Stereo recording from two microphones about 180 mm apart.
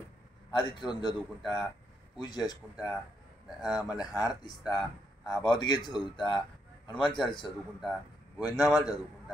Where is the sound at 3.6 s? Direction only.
Centre (ahead or behind).